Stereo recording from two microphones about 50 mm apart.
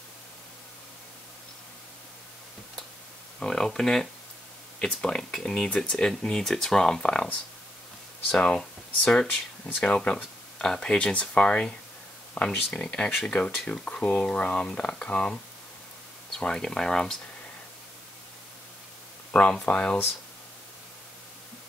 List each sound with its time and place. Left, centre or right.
3.3 s speech: centre
8.3 s speech: left
9.1 s speech: centre
16.3 s speech: centre
19.3 s speech: left